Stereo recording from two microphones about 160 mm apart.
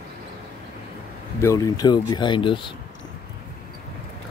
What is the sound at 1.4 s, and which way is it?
Speech, 20° left (ahead or behind).